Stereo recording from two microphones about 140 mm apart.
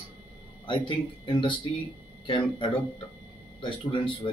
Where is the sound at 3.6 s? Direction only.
35° left (ahead or behind).